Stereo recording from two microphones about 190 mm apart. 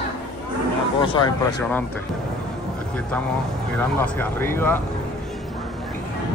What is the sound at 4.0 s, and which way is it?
Speech, 10° left (ahead or behind).